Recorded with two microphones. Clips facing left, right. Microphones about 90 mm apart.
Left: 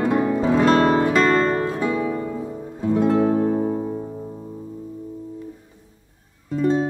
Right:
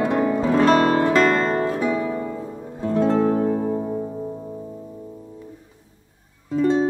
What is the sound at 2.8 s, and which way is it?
Music, 10° left (ahead or behind).